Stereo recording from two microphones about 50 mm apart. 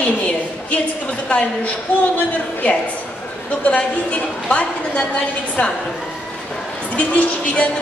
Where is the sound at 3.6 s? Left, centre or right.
Left.